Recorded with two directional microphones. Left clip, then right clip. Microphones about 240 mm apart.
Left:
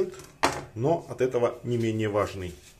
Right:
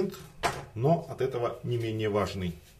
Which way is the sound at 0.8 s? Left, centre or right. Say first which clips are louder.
Left 2 dB; centre.